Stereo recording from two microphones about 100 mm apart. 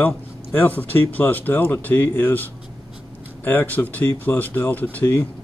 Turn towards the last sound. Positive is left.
turn(degrees=15)  # may be behind; listen again after turning